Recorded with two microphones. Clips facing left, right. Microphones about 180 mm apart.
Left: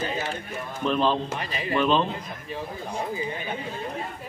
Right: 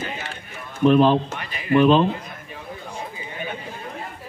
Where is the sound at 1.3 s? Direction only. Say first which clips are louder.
Right 6 dB; 30° left (ahead or behind).